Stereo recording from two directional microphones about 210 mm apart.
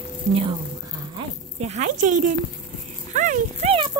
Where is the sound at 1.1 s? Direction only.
30° right (ahead or behind).